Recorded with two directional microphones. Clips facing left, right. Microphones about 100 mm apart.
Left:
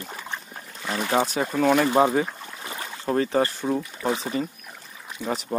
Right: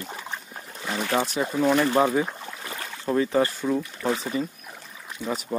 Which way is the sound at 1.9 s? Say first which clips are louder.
Left 2 dB; 20° left (ahead or behind).